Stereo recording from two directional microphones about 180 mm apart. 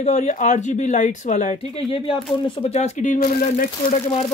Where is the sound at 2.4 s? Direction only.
30° left (ahead or behind); by 3.9 s 50° left (ahead or behind).